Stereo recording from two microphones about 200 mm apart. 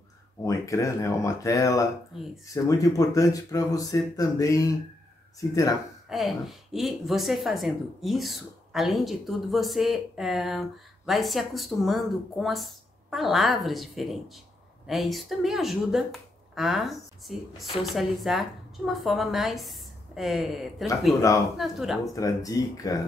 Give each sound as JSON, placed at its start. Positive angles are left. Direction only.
{"t": 0.4, "sound": "speech", "side_deg": 15}
{"t": 6.0, "sound": "a woman's voice", "side_deg": 0}
{"t": 22.0, "sound": "speech", "side_deg": 15}